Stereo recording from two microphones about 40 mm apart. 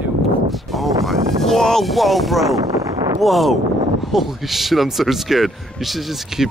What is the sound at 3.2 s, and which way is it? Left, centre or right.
Speech, centre.